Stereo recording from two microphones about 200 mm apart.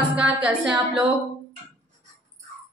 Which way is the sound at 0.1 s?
5° right (ahead or behind).